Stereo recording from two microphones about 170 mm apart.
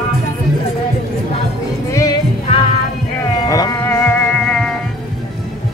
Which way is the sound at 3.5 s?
20° left (ahead or behind).